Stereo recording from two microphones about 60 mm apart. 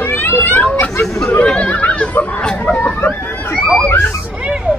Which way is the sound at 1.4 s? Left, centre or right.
Left.